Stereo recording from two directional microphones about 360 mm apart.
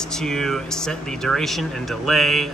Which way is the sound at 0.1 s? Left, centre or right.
Centre.